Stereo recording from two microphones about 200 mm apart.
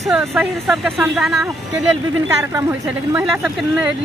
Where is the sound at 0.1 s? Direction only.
Centre (ahead or behind).